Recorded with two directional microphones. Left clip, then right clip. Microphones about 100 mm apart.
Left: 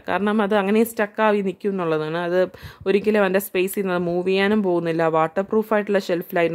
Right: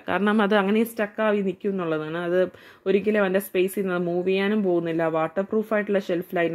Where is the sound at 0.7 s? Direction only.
20° left (ahead or behind).